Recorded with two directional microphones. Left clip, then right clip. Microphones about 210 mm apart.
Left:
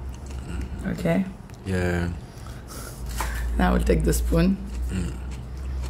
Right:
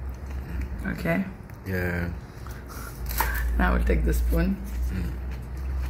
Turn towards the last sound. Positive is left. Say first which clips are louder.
# left 3 dB
turn(degrees=15)  # may be behind; listen again after turning